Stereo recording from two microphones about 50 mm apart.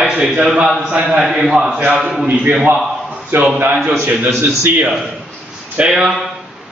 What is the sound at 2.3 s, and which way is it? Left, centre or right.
Speech, right.